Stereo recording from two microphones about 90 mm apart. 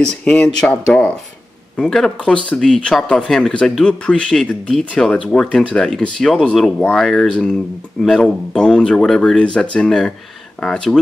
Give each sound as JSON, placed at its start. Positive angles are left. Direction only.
{"t": 0.0, "sound": "speech", "side_deg": 10}
{"t": 1.8, "sound": "speech", "side_deg": 5}